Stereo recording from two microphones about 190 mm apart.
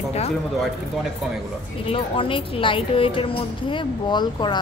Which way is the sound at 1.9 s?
30° left (ahead or behind).